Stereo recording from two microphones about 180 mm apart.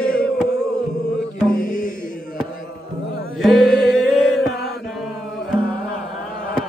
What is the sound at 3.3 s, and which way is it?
Chant, centre (ahead or behind).